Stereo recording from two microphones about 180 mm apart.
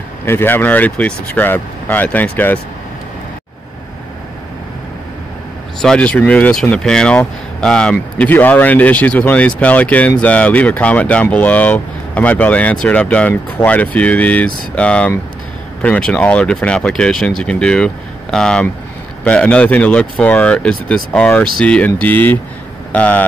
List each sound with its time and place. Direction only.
0.2 s speech: 10° left (ahead or behind)
5.8 s speech: 5° left (ahead or behind)